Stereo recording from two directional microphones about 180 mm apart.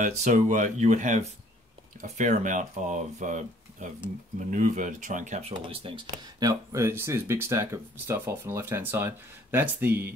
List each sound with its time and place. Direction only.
0.0 s speech: 45° right (ahead or behind); by 6.5 s 30° right (ahead or behind)
6.7 s speech: 15° right (ahead or behind)